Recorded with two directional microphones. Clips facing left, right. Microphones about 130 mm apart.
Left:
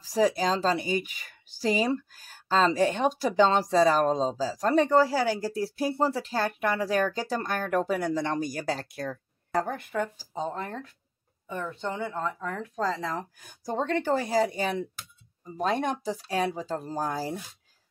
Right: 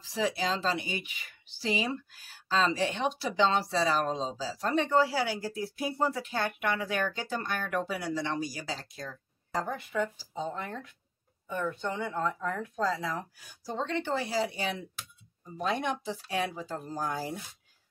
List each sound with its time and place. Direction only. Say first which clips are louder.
0.0 s speech: left 6 dB; 40° left (ahead or behind)
13.4 s speech: left 5 dB; 50° left (ahead or behind)